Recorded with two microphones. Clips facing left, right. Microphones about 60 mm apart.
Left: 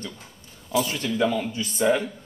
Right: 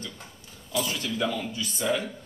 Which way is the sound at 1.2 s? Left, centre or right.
Left.